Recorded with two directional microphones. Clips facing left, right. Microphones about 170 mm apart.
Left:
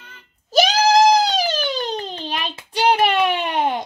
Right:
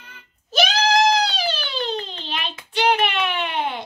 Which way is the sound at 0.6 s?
40° left (ahead or behind).